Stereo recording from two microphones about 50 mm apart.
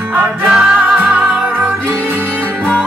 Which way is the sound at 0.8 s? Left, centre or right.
Right.